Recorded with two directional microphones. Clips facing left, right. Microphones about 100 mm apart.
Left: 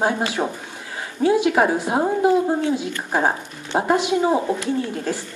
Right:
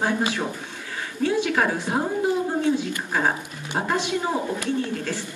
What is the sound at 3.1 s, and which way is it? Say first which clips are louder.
Speech: left 5 dB; 25° left (ahead or behind).